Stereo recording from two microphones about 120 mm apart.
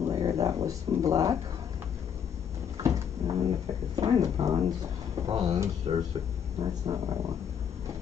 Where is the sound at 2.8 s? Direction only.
30° right (ahead or behind).